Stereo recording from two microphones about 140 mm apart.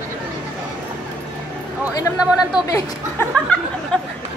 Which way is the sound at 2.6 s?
25° left (ahead or behind).